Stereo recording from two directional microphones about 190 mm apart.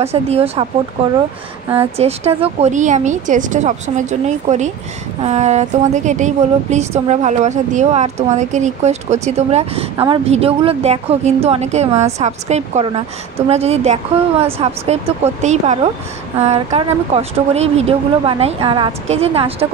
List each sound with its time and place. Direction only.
0.0 s speech: 35° right (ahead or behind)